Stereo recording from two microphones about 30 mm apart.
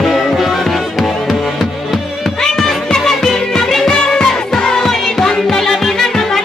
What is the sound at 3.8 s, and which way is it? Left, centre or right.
Music, left.